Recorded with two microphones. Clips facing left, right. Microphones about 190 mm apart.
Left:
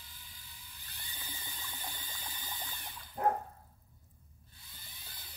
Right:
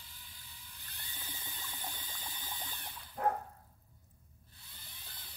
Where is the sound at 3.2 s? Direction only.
25° left (ahead or behind).